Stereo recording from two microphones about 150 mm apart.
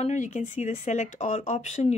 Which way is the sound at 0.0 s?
55° left (ahead or behind).